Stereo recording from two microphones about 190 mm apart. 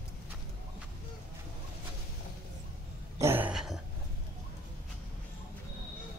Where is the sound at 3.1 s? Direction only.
10° right (ahead or behind).